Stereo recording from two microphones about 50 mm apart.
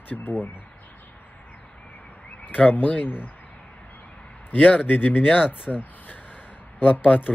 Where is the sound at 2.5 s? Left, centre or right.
Left.